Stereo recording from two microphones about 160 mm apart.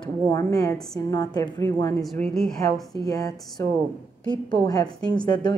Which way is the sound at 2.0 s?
Centre (ahead or behind).